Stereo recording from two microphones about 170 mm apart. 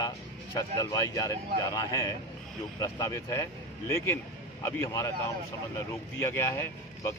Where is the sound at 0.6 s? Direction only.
20° left (ahead or behind).